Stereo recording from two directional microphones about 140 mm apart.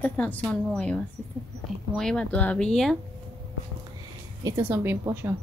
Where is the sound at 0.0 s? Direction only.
10° left (ahead or behind).